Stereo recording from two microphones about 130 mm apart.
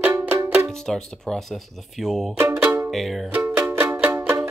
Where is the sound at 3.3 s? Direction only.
10° right (ahead or behind).